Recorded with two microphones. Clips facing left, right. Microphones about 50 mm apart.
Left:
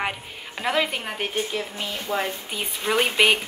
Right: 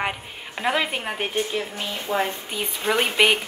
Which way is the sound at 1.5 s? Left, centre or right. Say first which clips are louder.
Right 1 dB; right.